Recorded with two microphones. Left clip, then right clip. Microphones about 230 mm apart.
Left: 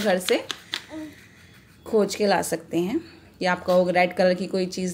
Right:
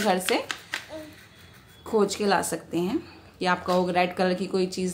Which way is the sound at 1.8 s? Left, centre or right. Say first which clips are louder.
Left 2 dB; centre.